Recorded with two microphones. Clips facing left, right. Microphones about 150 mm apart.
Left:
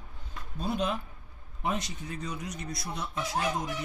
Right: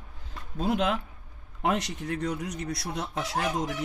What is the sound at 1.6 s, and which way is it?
Speech, 70° right (ahead or behind).